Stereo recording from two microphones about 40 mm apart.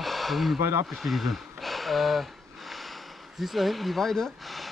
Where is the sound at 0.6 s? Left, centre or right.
Right.